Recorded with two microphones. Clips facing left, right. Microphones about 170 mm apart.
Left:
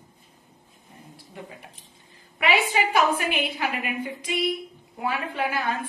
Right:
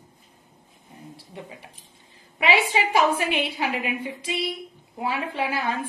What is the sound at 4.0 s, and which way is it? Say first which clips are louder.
A woman's voice: left 2 dB; 30° right (ahead or behind).